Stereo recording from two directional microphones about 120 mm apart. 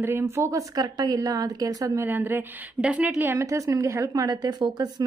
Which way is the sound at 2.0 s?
15° right (ahead or behind).